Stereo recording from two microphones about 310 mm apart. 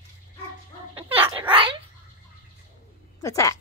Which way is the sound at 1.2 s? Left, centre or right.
Centre.